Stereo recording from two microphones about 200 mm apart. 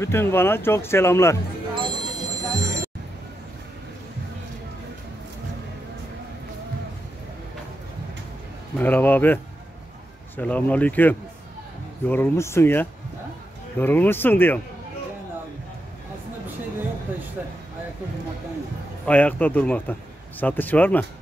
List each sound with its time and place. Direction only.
0.0 s a man's voice: 10° left (ahead or behind)
1.8 s music: 20° right (ahead or behind)
8.7 s a man's voice: 10° left (ahead or behind)
19.0 s a man's voice: 5° left (ahead or behind)